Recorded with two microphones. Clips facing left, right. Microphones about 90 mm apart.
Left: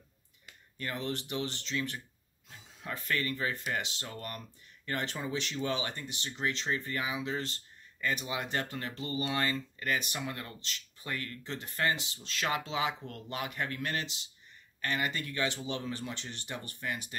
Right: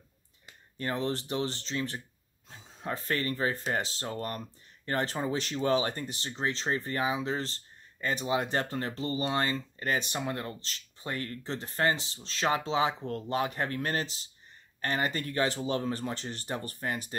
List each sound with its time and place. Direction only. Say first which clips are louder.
0.5 s speech: right 5 dB; 35° right (ahead or behind)